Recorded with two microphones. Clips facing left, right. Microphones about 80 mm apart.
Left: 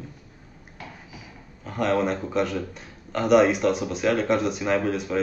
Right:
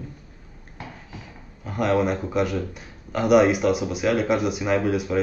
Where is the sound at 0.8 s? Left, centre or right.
Right.